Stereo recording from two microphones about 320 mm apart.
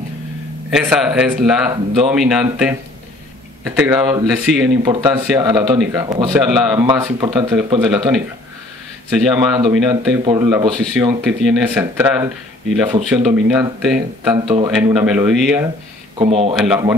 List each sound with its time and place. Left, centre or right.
0.7 s speech: centre
16.2 s speech: centre
16.5 s speech: centre